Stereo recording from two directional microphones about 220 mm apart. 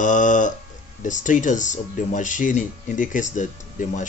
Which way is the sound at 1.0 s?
35° left (ahead or behind).